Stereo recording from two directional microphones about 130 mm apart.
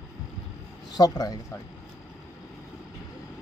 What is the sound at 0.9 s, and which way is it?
Speech, 30° left (ahead or behind).